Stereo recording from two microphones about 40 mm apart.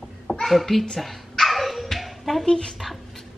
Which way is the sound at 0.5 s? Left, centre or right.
Centre.